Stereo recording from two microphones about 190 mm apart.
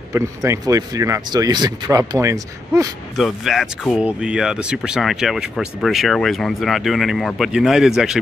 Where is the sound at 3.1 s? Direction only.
Centre (ahead or behind).